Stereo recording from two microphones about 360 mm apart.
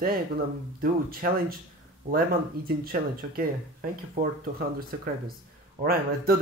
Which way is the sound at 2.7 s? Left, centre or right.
Right.